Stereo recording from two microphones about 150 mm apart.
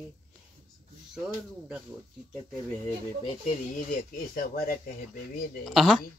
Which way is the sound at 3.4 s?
65° left (ahead or behind).